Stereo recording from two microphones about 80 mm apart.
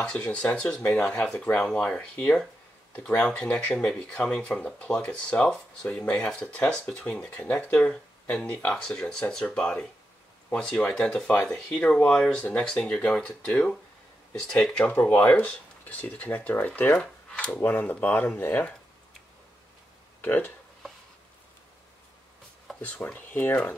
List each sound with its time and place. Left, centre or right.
0.0 s speech: centre
17.0 s a sound: centre
17.6 s speech: left
20.2 s speech: left
22.8 s speech: centre